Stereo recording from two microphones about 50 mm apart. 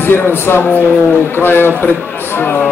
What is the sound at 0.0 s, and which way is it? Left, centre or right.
A man's voice, left.